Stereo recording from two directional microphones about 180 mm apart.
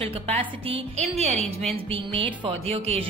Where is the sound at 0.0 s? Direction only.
30° right (ahead or behind).